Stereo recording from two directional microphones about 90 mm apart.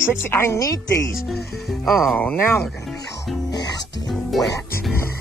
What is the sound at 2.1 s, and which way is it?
Speech, 15° left (ahead or behind).